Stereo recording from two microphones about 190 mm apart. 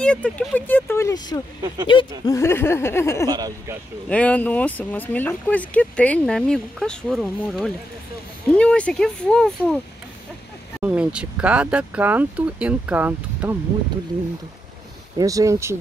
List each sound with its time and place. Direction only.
0.0 s speech: 5° left (ahead or behind)
3.3 s speech: 20° right (ahead or behind)
4.1 s speech: 5° left (ahead or behind)
10.8 s speech: 5° right (ahead or behind)
15.1 s speech: 15° right (ahead or behind)